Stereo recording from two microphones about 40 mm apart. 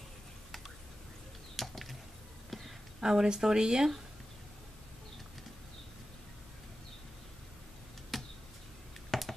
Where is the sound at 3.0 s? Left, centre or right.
Centre.